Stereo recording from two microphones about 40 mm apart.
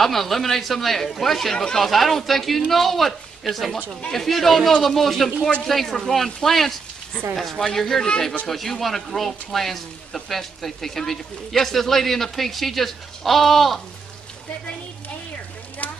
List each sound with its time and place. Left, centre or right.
0.0 s speech: centre
15.8 s stir: left